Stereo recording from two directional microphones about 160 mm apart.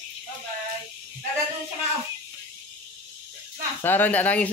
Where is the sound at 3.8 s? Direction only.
10° left (ahead or behind).